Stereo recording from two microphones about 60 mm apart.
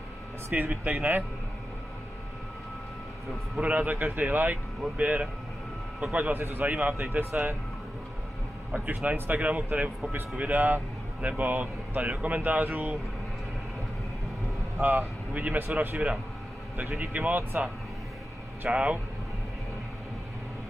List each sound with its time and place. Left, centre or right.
0.5 s speech: right
3.6 s speech: right
7.1 s speech: right
8.7 s speech: right
14.8 s speech: right
18.7 s speech: centre